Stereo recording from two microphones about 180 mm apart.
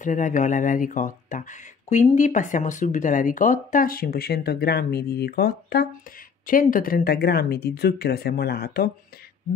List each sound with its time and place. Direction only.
0.0 s speech: 45° left (ahead or behind); by 5.9 s 60° left (ahead or behind)
6.4 s speech: 50° left (ahead or behind)